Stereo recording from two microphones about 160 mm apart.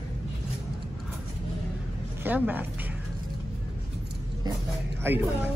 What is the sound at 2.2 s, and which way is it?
Speech, 10° right (ahead or behind).